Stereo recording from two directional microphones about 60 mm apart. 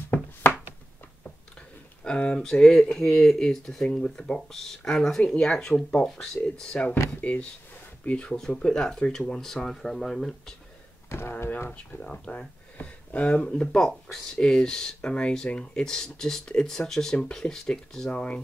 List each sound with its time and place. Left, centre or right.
2.0 s speech: centre
8.3 s speech: centre
11.1 s speech: left
12.0 s speech: centre